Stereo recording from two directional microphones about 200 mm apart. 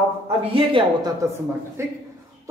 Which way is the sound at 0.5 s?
25° right (ahead or behind).